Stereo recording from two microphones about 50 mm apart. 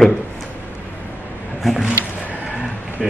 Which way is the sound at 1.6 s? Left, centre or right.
Centre.